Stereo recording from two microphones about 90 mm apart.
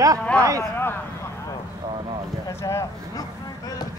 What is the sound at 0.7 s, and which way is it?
Speech, 25° left (ahead or behind).